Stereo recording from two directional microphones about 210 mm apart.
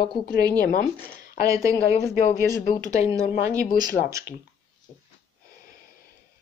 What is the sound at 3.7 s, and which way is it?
Speech, 20° right (ahead or behind).